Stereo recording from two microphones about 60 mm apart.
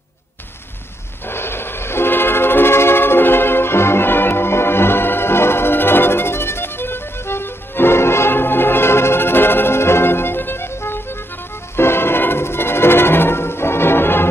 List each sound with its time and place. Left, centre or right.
1.2 s train: left
11.7 s music: left